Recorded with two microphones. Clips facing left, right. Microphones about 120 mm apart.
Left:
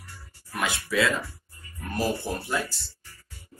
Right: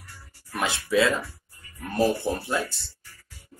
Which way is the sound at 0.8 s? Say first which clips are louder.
Right 4 dB; 25° right (ahead or behind).